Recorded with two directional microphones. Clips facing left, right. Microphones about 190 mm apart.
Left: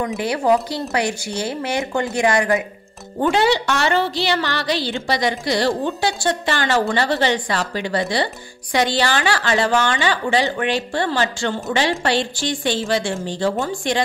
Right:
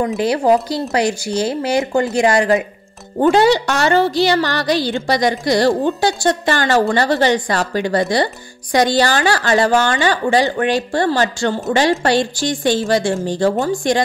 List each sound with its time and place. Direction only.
0.2 s a woman's voice: 35° right (ahead or behind)